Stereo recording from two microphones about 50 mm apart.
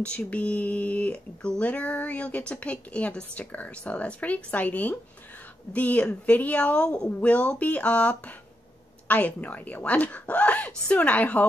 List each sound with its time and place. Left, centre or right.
0.0 s speech: left